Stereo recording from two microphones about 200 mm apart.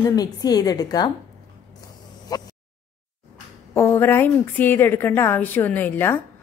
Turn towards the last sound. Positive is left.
turn(degrees=10)  # may be behind; listen again after turning